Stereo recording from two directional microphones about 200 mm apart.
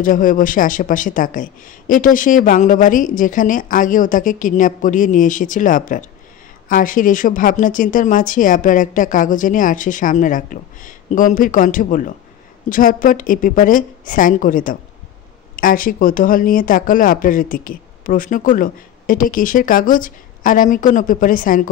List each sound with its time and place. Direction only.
0.0 s speech: 45° left (ahead or behind)